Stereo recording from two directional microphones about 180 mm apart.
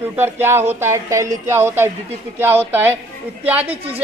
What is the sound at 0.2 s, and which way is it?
A man's voice, 10° right (ahead or behind).